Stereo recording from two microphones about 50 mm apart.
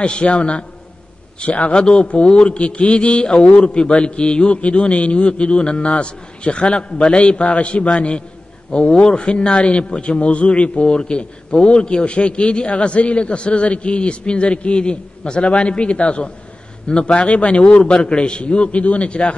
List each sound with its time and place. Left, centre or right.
0.0 s a man's voice: left